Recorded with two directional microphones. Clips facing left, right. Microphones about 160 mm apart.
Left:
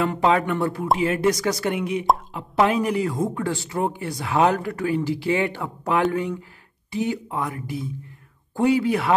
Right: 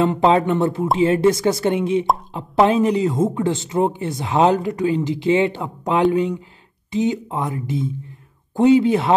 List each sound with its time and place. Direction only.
0.0 s a woman's voice: 25° right (ahead or behind)